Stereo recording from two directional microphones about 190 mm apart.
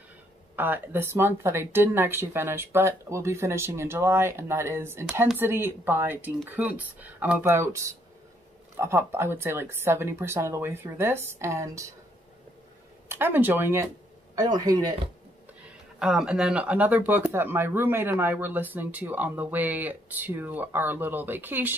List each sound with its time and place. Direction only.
0.6 s speech: 10° right (ahead or behind)
13.1 s a man's voice: 10° right (ahead or behind)
16.0 s speech: 5° right (ahead or behind)